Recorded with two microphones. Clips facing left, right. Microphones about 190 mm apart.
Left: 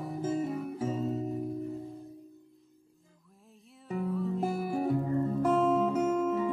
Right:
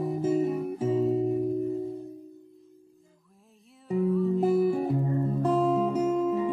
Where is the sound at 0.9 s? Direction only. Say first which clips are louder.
Right 9 dB; 15° right (ahead or behind).